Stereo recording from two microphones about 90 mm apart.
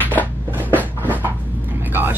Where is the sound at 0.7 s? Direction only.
20° right (ahead or behind).